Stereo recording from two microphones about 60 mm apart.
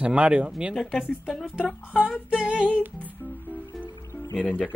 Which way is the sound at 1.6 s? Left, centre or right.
Left.